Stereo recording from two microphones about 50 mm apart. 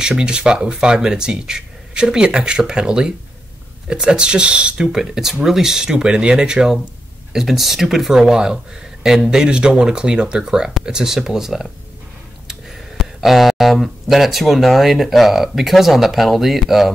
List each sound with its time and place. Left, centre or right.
0.0 s speech: centre
4.9 s speech: centre